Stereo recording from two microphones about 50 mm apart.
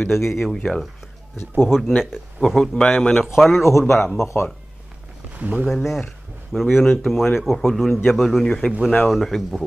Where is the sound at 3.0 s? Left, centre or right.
Centre.